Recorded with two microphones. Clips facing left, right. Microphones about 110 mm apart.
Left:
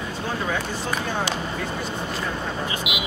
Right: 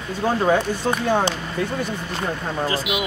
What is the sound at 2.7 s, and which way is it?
Speech, 40° right (ahead or behind).